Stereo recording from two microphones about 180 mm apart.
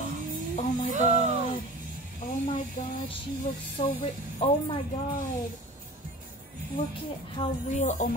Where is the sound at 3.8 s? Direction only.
25° left (ahead or behind).